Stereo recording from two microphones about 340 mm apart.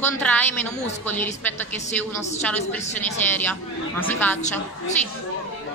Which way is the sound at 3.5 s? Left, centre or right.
Centre.